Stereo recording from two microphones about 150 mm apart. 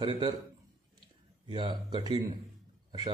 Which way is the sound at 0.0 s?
30° right (ahead or behind).